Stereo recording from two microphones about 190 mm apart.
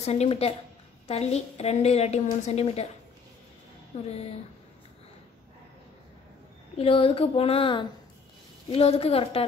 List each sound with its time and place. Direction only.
0.0 s a woman's voice: 35° left (ahead or behind)
3.9 s a woman's voice: 35° left (ahead or behind)
6.8 s a woman's voice: 30° left (ahead or behind)